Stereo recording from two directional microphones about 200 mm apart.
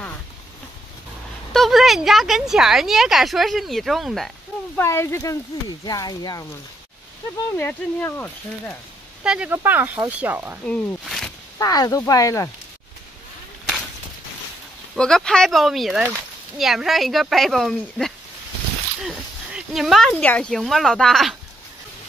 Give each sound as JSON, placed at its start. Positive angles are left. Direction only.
{"t": 1.5, "sound": "speech", "side_deg": 0}
{"t": 4.7, "sound": "speech", "side_deg": 10}
{"t": 7.5, "sound": "speech", "side_deg": 10}
{"t": 9.2, "sound": "speech", "side_deg": -5}
{"t": 10.6, "sound": "speech", "side_deg": 5}
{"t": 11.5, "sound": "speech", "side_deg": 20}
{"t": 15.0, "sound": "speech", "side_deg": 5}